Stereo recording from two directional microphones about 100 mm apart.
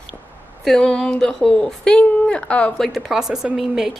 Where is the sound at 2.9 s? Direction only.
Centre (ahead or behind).